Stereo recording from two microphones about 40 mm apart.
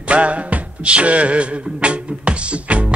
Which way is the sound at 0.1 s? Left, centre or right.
Right.